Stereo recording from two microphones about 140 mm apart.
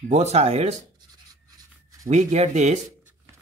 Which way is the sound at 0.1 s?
55° right (ahead or behind).